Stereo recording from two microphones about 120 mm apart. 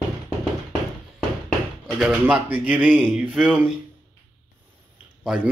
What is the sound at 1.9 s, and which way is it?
Speech, 5° right (ahead or behind).